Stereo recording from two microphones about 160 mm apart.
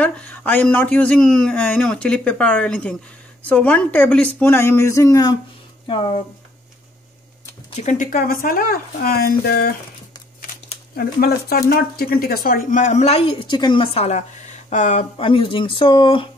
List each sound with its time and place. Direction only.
0.0 s speech: 10° left (ahead or behind); by 6.2 s 30° left (ahead or behind)
7.7 s a woman's voice: 50° left (ahead or behind); by 9.8 s 70° left (ahead or behind)
11.0 s speech: 75° left (ahead or behind); by 16.3 s 30° left (ahead or behind)